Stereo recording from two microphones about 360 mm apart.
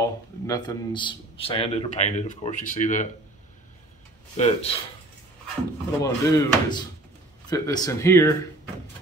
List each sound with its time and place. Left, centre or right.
0.0 s speech: centre
4.4 s speech: centre
5.9 s speech: centre